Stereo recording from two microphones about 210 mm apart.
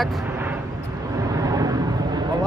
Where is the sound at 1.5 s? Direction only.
15° right (ahead or behind).